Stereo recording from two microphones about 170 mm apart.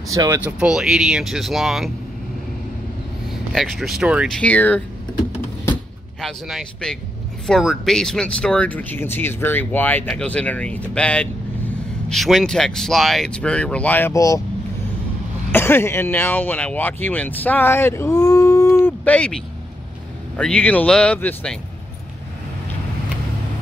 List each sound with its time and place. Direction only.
0.1 s speech: 20° right (ahead or behind)
0.4 s speech: 5° right (ahead or behind)
3.3 s speech: centre (ahead or behind)
4.4 s speech: 10° left (ahead or behind)
6.2 s speech: centre (ahead or behind); by 14.4 s 20° left (ahead or behind)
15.5 s speech: 15° left (ahead or behind)